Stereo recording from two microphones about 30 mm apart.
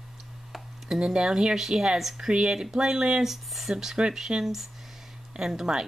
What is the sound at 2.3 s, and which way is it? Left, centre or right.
Speech, right.